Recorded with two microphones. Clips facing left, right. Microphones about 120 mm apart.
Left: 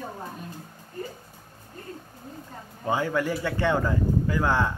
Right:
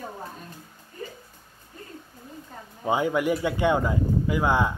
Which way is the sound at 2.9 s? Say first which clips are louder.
Right 2 dB; 15° right (ahead or behind).